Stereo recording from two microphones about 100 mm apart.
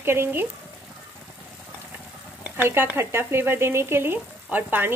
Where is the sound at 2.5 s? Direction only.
25° right (ahead or behind).